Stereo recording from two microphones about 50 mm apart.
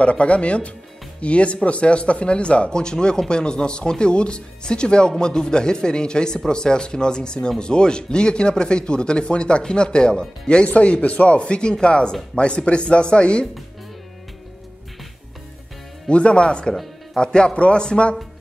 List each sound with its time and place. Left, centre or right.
0.0 s speech: left
16.1 s speech: left